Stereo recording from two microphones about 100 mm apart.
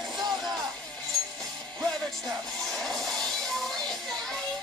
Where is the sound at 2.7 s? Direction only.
5° left (ahead or behind).